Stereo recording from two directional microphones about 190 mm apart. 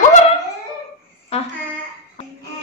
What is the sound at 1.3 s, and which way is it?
Speech, 35° left (ahead or behind).